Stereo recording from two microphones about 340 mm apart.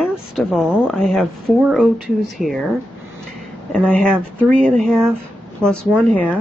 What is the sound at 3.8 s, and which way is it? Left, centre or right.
A woman's voice, centre.